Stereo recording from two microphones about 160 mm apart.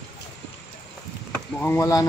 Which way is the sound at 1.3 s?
15° left (ahead or behind).